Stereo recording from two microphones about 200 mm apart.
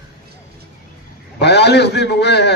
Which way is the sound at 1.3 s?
55° left (ahead or behind).